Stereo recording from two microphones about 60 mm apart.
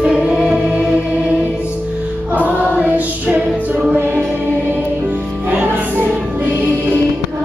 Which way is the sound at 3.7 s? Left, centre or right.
Right.